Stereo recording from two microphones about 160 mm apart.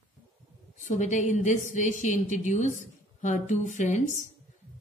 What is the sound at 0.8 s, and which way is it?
Speech, 50° left (ahead or behind).